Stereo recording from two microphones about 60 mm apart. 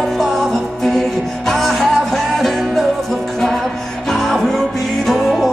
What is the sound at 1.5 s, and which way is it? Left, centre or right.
Music, centre.